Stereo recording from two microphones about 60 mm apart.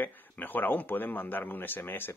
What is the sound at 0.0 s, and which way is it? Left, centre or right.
Speech, left.